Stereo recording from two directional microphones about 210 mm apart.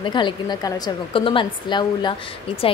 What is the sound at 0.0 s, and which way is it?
Speech, 20° left (ahead or behind).